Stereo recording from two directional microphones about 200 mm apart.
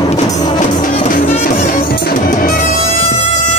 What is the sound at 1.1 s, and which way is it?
Music, 40° left (ahead or behind).